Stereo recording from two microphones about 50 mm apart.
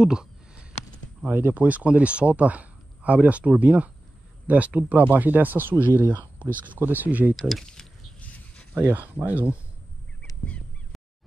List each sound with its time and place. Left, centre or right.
0.0 s speech: centre
1.2 s speech: right
7.3 s speech: centre
8.2 s a sound: left
8.7 s speech: right
9.1 s speech: right